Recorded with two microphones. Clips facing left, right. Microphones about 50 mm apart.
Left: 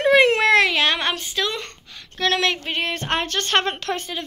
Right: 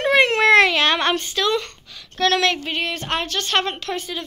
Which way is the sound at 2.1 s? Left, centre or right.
Centre.